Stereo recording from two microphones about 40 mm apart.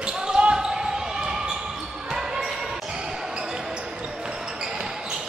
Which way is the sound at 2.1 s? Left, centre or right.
Centre.